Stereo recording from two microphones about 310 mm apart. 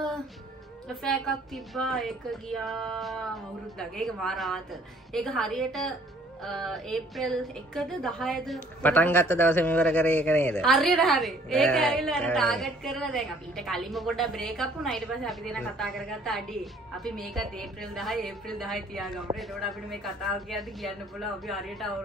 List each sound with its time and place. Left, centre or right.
0.8 s a woman's voice: centre